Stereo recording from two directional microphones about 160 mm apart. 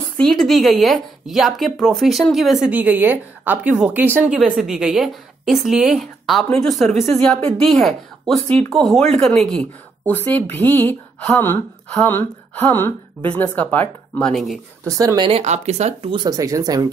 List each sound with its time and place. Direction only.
0.2 s speech: 5° left (ahead or behind)
7.0 s a woman's voice: 45° right (ahead or behind)
7.7 s speech: centre (ahead or behind)
14.9 s speech: 20° right (ahead or behind)
15.4 s speech: 45° right (ahead or behind); by 16.8 s 20° right (ahead or behind)